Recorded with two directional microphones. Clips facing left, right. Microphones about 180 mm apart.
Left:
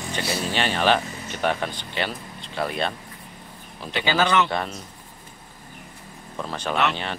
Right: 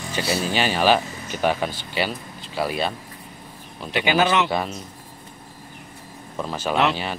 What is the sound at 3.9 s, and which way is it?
Speech, 15° right (ahead or behind).